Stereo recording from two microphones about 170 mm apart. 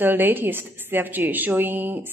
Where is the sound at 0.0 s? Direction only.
10° right (ahead or behind).